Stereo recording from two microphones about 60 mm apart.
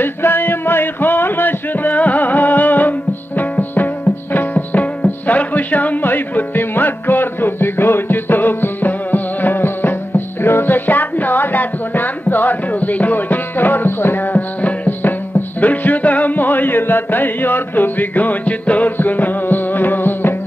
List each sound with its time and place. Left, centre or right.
0.0 s music: left